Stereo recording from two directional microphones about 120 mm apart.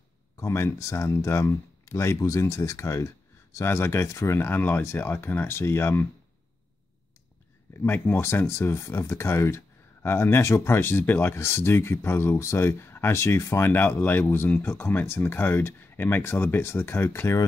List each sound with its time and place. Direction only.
0.4 s speech: 20° left (ahead or behind)
7.7 s speech: 20° left (ahead or behind)